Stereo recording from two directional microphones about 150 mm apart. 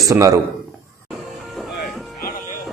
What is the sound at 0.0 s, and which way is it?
Speech, 20° right (ahead or behind).